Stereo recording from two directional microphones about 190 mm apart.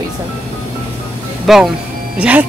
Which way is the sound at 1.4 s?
Centre (ahead or behind).